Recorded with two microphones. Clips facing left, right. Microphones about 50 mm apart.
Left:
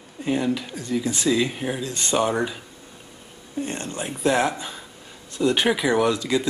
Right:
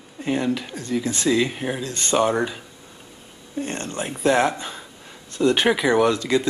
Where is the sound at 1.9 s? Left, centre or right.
Centre.